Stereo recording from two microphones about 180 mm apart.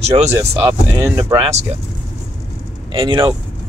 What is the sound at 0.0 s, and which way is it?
Speech, 35° right (ahead or behind).